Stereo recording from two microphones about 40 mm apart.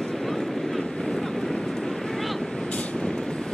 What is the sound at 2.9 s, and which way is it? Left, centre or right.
Vehicle, centre.